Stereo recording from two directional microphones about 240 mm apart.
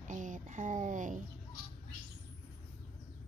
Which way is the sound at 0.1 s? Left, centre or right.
Right.